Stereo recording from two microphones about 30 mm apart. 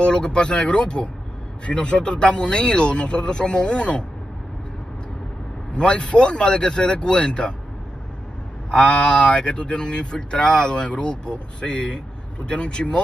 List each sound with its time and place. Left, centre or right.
0.0 s speech: left
5.8 s speech: left
8.7 s speech: left